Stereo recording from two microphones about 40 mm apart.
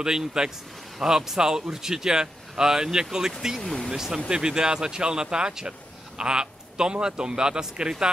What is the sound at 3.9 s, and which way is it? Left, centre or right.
A man's voice, centre.